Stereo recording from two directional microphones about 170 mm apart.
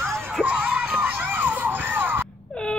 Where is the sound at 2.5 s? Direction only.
5° left (ahead or behind).